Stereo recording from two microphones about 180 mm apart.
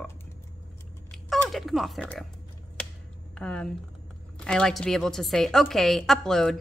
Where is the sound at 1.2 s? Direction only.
Centre (ahead or behind).